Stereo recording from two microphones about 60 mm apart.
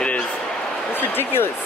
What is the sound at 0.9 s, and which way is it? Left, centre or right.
Speech, left.